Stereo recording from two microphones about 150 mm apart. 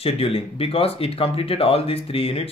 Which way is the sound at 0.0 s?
40° left (ahead or behind).